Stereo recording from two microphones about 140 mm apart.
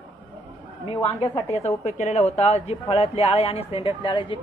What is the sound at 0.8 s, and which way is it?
Speech, 45° left (ahead or behind).